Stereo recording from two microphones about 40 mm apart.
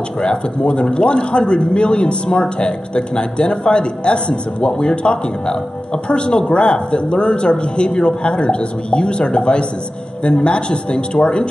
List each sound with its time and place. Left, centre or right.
0.2 s speech: left